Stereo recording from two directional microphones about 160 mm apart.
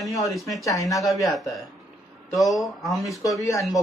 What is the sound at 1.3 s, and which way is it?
Speech, centre (ahead or behind).